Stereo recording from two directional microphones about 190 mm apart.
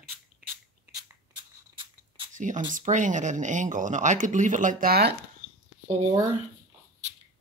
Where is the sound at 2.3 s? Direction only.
40° right (ahead or behind).